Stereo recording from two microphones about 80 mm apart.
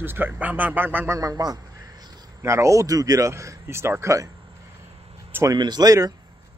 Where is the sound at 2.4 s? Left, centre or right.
Right.